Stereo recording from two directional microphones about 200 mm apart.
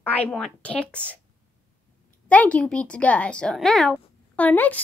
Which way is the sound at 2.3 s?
5° left (ahead or behind).